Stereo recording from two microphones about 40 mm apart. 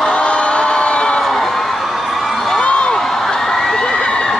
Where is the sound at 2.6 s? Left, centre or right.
Left.